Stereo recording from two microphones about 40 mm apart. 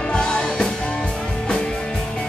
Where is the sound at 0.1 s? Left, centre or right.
Left.